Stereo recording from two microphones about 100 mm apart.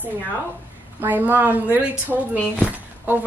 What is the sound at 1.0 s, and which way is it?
Speech, 20° right (ahead or behind).